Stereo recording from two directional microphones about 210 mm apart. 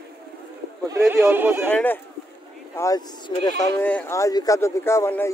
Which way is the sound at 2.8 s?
20° left (ahead or behind).